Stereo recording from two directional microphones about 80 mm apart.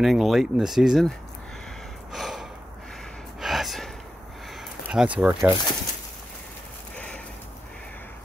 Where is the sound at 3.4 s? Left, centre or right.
Centre.